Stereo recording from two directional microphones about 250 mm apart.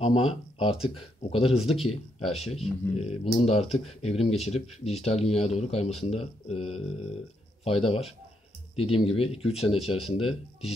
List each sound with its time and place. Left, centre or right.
0.0 s speech: left